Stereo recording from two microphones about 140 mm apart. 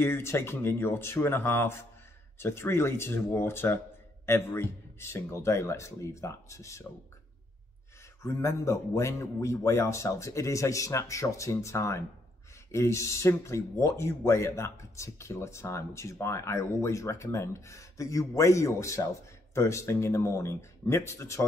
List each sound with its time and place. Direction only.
0.0 s speech: 15° left (ahead or behind)
8.2 s speech: 20° left (ahead or behind)